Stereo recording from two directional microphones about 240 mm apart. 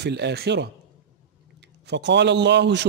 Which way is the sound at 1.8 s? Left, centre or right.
Right.